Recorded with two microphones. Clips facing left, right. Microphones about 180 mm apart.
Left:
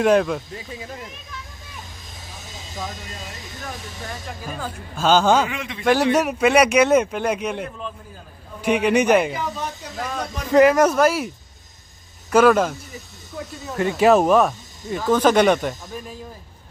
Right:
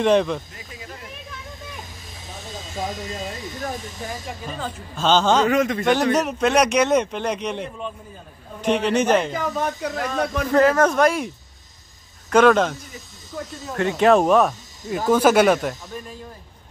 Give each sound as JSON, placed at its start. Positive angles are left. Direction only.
{"t": 0.0, "sound": "speech", "side_deg": 5}
{"t": 4.3, "sound": "speech", "side_deg": 5}
{"t": 5.5, "sound": "a man's voice", "side_deg": -45}
{"t": 6.1, "sound": "speech", "side_deg": 10}
{"t": 9.6, "sound": "speech", "side_deg": -60}
{"t": 10.5, "sound": "speech", "side_deg": 15}